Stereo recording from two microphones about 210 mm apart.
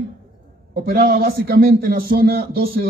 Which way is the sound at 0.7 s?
45° right (ahead or behind).